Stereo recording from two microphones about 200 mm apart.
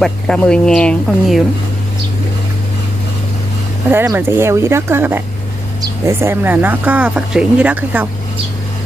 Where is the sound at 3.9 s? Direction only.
10° right (ahead or behind).